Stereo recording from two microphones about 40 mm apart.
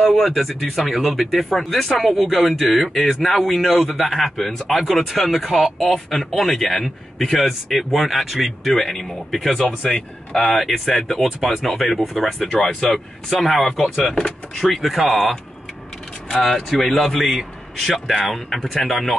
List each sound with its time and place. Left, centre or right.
0.0 s speech: centre
13.9 s speech: centre
14.7 s speech: centre
17.0 s speech: centre